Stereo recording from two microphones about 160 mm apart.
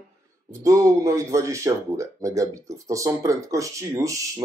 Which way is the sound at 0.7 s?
20° right (ahead or behind).